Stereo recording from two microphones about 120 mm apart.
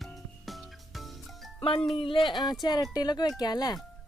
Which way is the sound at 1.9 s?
45° left (ahead or behind).